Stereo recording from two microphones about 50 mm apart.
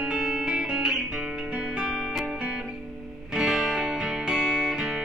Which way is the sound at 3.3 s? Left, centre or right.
Centre.